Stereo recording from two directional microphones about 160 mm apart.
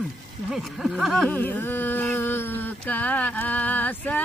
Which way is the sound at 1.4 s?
10° left (ahead or behind).